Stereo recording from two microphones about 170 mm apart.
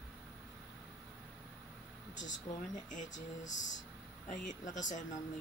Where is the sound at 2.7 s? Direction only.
45° left (ahead or behind).